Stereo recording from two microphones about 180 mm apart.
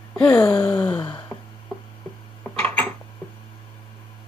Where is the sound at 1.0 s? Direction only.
20° left (ahead or behind).